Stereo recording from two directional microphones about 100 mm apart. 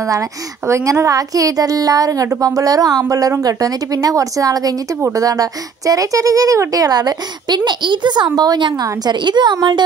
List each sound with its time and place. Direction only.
0.0 s a woman's voice: 35° right (ahead or behind)